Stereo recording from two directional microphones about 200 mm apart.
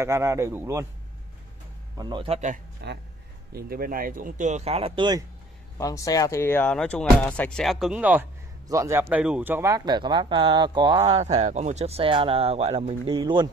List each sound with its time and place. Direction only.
0.0 s a man's voice: 15° right (ahead or behind)
2.0 s speech: 25° right (ahead or behind)
2.8 s speech: 55° right (ahead or behind); by 5.2 s 20° right (ahead or behind)
5.8 s speech: 15° left (ahead or behind); by 13.5 s 25° right (ahead or behind)